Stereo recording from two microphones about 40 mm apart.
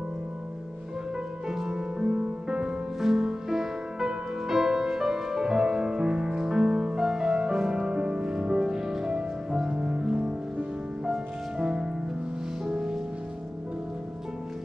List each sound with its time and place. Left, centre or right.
1.5 s music: centre